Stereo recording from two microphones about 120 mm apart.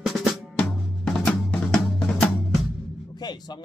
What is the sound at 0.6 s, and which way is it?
Drum, 5° left (ahead or behind).